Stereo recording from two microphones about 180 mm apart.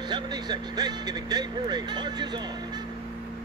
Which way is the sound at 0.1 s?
25° right (ahead or behind).